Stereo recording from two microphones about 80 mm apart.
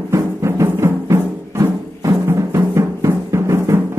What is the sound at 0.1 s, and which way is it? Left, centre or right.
Music, right.